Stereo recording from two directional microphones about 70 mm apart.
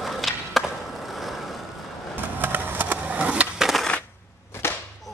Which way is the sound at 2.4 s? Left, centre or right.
Right.